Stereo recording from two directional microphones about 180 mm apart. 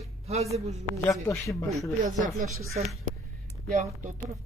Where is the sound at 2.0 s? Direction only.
45° right (ahead or behind).